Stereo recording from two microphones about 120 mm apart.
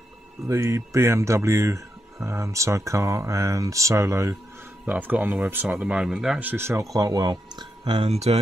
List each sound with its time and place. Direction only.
0.5 s speech: 25° right (ahead or behind)
4.8 s speech: 10° right (ahead or behind)
6.5 s speech: 20° right (ahead or behind); by 8.1 s 40° right (ahead or behind)
8.1 s mantra: 60° right (ahead or behind)